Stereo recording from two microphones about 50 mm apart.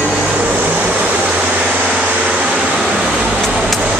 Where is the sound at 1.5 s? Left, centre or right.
Centre.